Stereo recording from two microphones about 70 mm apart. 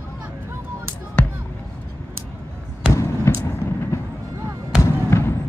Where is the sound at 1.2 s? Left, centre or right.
Centre.